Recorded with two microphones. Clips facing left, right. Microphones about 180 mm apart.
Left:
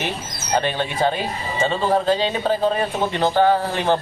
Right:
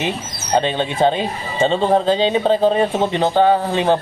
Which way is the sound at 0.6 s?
20° right (ahead or behind).